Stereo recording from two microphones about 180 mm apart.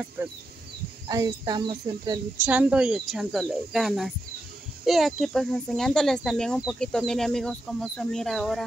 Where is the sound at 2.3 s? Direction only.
10° right (ahead or behind).